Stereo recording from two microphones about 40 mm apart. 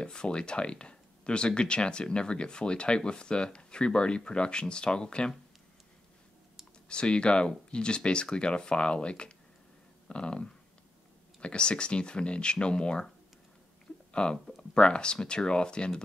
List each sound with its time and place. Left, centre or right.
0.0 s speech: left
6.9 s speech: left
14.1 s speech: left